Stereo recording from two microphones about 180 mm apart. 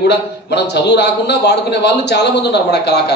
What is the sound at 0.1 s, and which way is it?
A man's voice, 70° left (ahead or behind).